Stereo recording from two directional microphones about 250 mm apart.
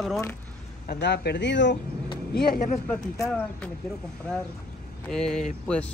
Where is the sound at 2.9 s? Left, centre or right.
Centre.